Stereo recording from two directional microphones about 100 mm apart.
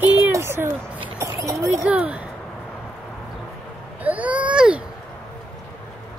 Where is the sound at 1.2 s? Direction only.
30° right (ahead or behind).